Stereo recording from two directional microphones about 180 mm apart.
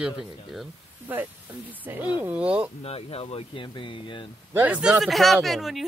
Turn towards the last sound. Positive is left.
turn(degrees=0)  # may be behind; listen again after turning